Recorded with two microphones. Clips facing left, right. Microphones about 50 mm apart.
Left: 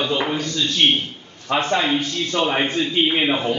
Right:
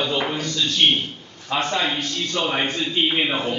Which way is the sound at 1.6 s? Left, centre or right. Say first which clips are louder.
Left 3 dB; left.